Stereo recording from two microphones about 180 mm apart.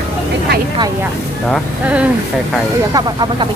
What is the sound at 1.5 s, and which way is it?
Speech, 5° right (ahead or behind).